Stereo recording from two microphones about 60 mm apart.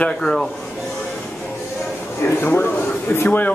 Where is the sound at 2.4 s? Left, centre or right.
Left.